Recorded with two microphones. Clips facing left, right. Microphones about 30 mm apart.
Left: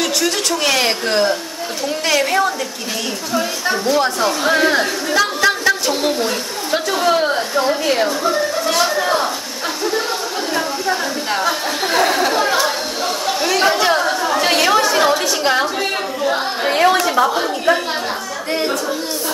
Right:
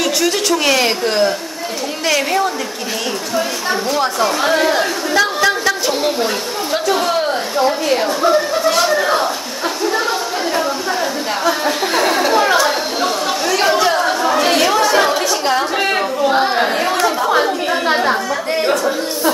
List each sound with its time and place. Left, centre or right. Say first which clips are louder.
0.7 s a woman's voice: left 1 dB; centre
3.8 s a woman's voice: left 1 dB; centre
6.7 s a woman's voice: left 1 dB; centre
8.6 s a sound: right 3 dB; centre
11.9 s a sound: left 1 dB; centre
13.6 s chatter: right 1 dB; centre
14.0 s chatter: right 2 dB; centre
14.5 s chatter: left 1 dB; centre
16.7 s chatter: left 4 dB; left